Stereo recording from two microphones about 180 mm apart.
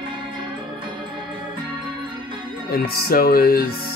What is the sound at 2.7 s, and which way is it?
Speech, 55° left (ahead or behind).